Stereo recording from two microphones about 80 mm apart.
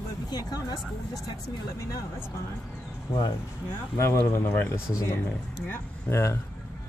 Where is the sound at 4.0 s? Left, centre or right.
Left.